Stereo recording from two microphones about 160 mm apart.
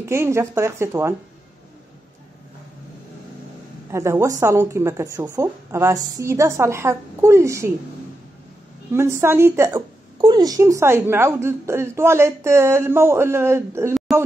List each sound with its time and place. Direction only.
0.0 s a woman's voice: 15° right (ahead or behind)
3.9 s a woman's voice: 15° right (ahead or behind)
8.9 s a woman's voice: 15° right (ahead or behind)